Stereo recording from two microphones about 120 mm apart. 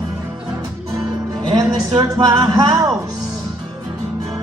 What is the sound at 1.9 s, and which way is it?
Music, 30° right (ahead or behind).